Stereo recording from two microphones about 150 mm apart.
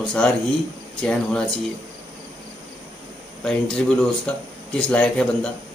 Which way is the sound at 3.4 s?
5° left (ahead or behind).